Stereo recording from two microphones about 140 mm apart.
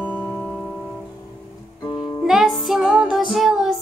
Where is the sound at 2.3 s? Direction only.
Centre (ahead or behind).